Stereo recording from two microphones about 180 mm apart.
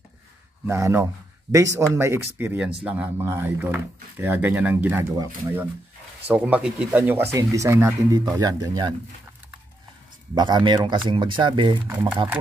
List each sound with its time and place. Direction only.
0.7 s speech: 15° right (ahead or behind)
10.3 s speech: 25° right (ahead or behind)